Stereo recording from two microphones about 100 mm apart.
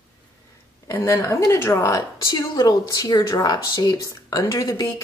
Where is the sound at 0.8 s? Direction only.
25° left (ahead or behind).